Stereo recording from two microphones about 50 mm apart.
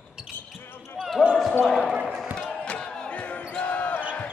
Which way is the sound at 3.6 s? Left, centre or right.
Left.